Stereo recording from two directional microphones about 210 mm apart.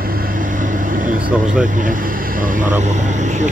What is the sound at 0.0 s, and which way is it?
Vehicle, 45° right (ahead or behind).